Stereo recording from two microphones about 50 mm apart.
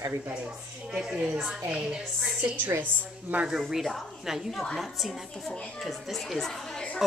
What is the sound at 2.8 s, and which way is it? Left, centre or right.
Speech, right.